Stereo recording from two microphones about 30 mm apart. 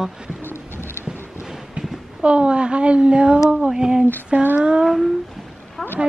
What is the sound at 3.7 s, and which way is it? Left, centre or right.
Speech, right.